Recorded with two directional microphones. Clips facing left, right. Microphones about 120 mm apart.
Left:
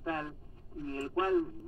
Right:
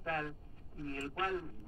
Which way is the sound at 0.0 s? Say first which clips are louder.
Left 2 dB; 20° left (ahead or behind).